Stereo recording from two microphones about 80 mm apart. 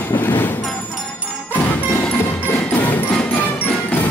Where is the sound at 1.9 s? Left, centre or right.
Centre.